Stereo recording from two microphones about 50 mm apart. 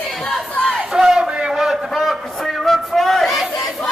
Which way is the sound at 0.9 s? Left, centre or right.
Centre.